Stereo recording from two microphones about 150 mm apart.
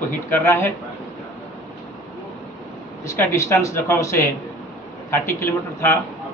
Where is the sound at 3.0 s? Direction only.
20° left (ahead or behind).